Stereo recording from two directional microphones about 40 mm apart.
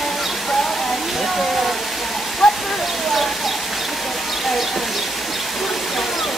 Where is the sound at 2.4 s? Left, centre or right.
Centre.